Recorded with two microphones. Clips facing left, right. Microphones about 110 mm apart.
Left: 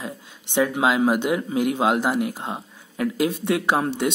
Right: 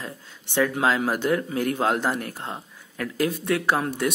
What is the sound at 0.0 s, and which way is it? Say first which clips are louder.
A man's voice: left 3 dB; 15° left (ahead or behind).